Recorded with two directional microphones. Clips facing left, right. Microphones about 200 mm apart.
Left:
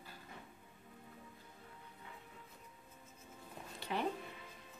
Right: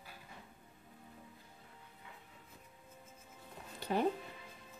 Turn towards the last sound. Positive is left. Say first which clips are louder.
# right 5 dB
turn(degrees=-40)  # may be behind; listen again after turning